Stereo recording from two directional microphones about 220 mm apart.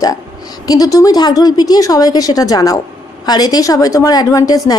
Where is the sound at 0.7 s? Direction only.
15° left (ahead or behind).